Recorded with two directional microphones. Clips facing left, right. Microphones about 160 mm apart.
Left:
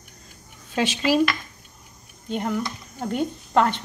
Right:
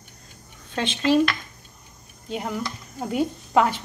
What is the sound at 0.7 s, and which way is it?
A woman's voice, 5° left (ahead or behind).